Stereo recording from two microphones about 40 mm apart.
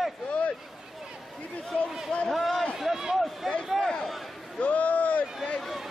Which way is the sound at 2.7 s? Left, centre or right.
Centre.